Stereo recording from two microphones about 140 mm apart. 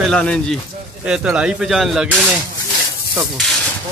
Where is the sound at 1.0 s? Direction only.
5° right (ahead or behind).